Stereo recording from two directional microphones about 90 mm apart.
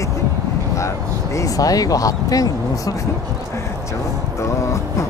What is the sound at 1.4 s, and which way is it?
Speech, 40° left (ahead or behind).